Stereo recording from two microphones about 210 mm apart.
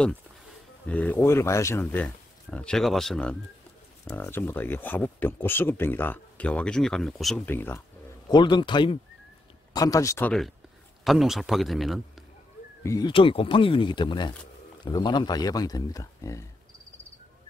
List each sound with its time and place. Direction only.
0.8 s speech: 5° left (ahead or behind)
8.3 s a man's voice: 20° left (ahead or behind); by 12.3 s centre (ahead or behind)
12.8 s speech: 20° left (ahead or behind)